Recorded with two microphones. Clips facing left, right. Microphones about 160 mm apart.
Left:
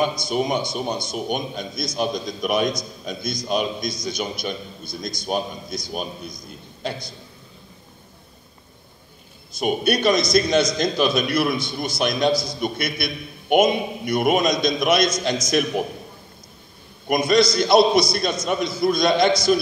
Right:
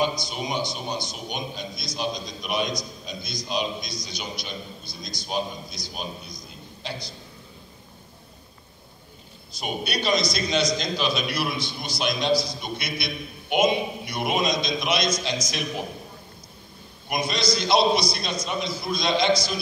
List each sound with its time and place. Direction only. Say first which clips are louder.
0.2 s a man's voice: left 6 dB; 50° left (ahead or behind)
9.6 s a man's voice: left 9 dB; 50° left (ahead or behind)
17.1 s a man's voice: left 8 dB; 50° left (ahead or behind)